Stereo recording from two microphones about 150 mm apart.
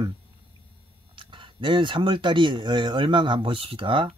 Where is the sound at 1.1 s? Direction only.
35° right (ahead or behind).